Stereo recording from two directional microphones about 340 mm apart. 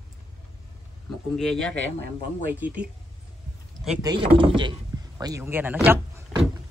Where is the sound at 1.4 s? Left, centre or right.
Centre.